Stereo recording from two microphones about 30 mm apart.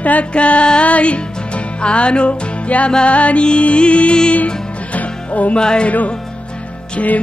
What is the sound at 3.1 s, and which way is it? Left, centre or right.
Music, left.